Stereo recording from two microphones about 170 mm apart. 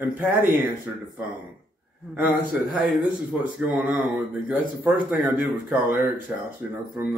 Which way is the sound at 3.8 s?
10° right (ahead or behind).